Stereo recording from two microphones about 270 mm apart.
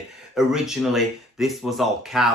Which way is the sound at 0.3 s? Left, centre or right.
Centre.